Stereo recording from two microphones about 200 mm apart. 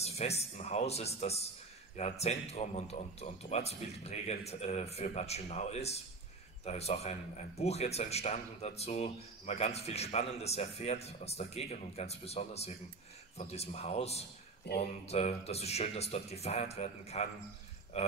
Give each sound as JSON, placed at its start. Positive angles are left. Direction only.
{"t": 0.0, "sound": "speech", "side_deg": 30}
{"t": 14.7, "sound": "a sound", "side_deg": 55}
{"t": 15.0, "sound": "speech", "side_deg": 30}